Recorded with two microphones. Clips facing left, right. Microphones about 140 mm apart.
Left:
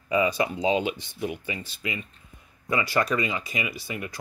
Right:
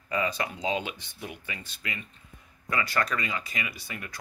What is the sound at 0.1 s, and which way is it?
Speech, 10° left (ahead or behind).